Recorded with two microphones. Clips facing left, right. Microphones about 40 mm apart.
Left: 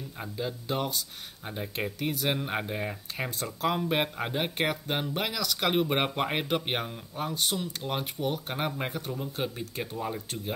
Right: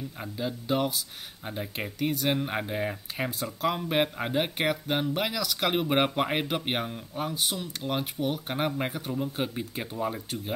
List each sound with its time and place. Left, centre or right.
0.2 s speech: centre